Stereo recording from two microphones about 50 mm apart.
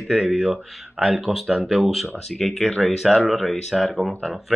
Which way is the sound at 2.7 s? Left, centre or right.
Centre.